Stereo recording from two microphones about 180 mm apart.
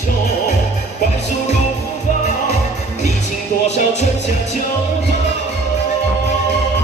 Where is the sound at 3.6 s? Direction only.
40° left (ahead or behind).